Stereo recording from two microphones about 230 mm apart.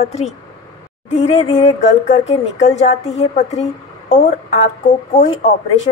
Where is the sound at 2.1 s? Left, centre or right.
Left.